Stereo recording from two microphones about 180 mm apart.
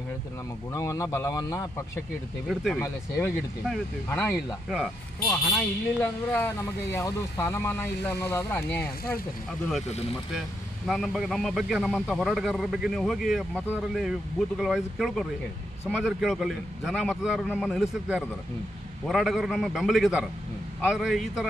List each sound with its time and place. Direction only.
0.7 s speech: 20° left (ahead or behind)
2.4 s a man's voice: centre (ahead or behind)
5.3 s speech: 10° left (ahead or behind)
9.5 s a man's voice: centre (ahead or behind)
10.9 s a man's voice: centre (ahead or behind)